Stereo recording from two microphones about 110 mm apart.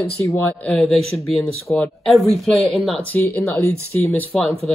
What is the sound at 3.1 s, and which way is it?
Speech, 20° left (ahead or behind).